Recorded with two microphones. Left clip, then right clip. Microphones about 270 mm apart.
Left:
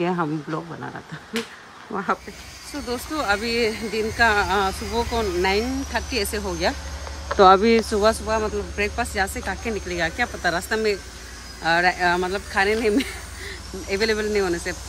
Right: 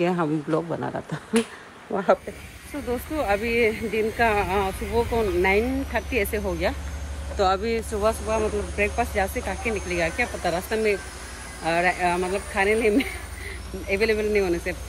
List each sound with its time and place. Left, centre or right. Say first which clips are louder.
0.0 s speech: even; centre
7.3 s speech: left 9 dB; left
8.3 s speech: left 1 dB; centre